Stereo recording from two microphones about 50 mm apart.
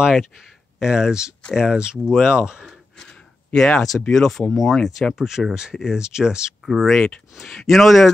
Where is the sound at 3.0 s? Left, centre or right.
Centre.